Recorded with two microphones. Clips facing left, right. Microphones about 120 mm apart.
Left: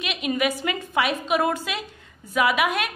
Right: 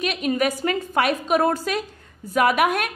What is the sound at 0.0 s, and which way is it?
A woman's voice, 40° right (ahead or behind).